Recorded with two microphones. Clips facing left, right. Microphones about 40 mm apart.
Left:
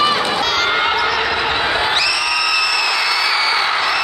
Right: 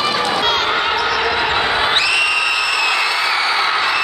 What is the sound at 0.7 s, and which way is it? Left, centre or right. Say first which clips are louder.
Basketball bounce: left 1 dB; centre.